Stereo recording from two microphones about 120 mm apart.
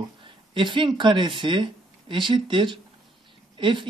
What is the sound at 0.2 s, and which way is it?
Speech, 45° right (ahead or behind).